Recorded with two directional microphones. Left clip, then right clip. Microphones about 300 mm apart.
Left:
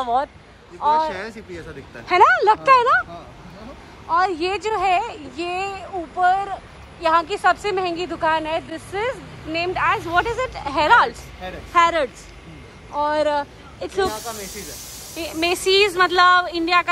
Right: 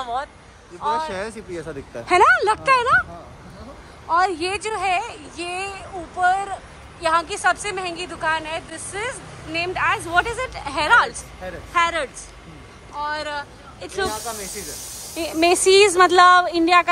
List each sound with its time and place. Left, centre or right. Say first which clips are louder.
0.0 s speech: left 6 dB; centre
4.1 s speech: even; centre